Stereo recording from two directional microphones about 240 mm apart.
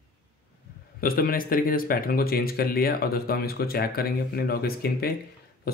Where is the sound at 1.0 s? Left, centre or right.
Left.